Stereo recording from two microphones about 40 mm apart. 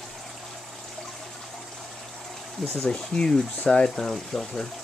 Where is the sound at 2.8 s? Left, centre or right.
Centre.